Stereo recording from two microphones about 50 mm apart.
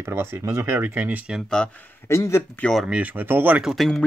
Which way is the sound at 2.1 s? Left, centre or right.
Left.